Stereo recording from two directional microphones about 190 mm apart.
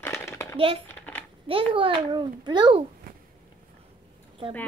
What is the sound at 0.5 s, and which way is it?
Speech, 30° right (ahead or behind).